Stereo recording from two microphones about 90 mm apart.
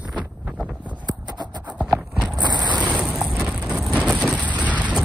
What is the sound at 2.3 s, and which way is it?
Mechanisms, 55° right (ahead or behind).